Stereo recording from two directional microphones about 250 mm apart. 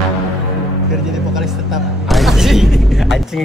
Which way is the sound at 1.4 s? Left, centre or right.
Centre.